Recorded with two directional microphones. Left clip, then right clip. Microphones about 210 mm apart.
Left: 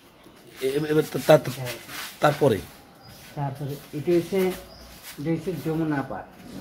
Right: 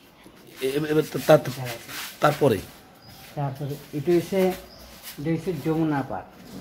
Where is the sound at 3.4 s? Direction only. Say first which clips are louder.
Right 1 dB; 35° right (ahead or behind).